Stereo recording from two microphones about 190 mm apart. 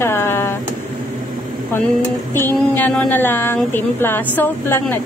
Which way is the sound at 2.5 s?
10° left (ahead or behind).